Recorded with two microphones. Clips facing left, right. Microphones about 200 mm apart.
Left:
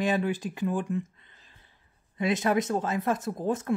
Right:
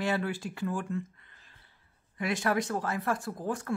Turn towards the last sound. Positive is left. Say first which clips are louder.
# left 5 dB
turn(degrees=20)  # may be behind; listen again after turning